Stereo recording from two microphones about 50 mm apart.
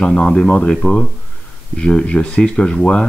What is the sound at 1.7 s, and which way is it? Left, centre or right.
Speech, centre.